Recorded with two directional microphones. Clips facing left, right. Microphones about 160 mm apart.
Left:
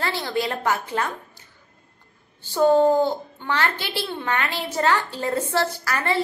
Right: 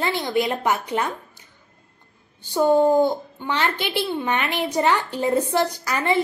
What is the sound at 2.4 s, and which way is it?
A child's voice, 15° right (ahead or behind).